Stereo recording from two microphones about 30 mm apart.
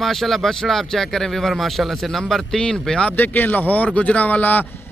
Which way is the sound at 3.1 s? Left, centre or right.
Left.